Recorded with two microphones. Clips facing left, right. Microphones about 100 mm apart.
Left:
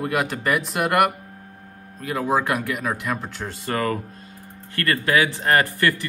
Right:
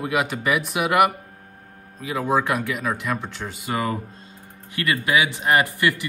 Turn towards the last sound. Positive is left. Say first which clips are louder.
# even
turn(degrees=-15)  # may be behind; listen again after turning